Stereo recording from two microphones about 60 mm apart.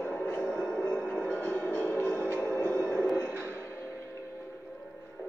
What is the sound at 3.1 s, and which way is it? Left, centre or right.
Music, left.